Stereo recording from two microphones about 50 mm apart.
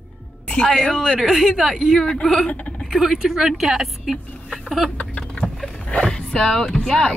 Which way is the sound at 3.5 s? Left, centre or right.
Centre.